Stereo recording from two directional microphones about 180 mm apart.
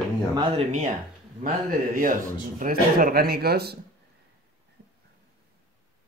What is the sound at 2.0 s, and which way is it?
Speech, 50° right (ahead or behind).